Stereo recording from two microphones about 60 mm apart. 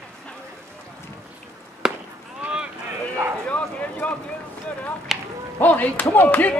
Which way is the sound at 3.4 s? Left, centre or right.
Left.